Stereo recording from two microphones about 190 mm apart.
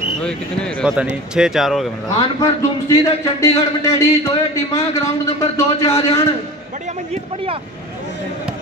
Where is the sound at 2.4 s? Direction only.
15° left (ahead or behind).